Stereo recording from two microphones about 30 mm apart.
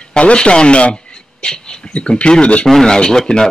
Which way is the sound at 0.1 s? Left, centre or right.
Left.